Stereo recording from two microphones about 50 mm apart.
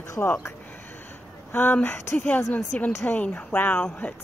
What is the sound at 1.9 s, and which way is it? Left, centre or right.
Speech, left.